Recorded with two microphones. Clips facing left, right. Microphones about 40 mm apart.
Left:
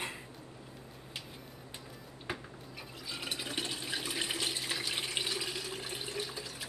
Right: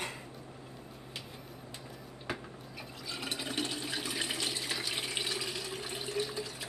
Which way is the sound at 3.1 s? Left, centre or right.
Centre.